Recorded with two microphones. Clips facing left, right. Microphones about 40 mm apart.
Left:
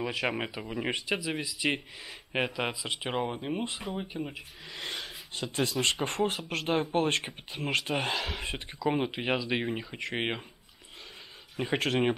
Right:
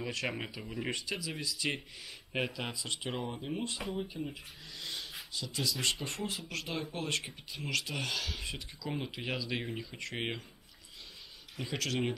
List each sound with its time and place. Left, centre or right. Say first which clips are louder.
0.3 s speech: left 6 dB; left
3.1 s speech: left 7 dB; left
5.3 s speech: left 6 dB; left
11.5 s speech: left 7 dB; left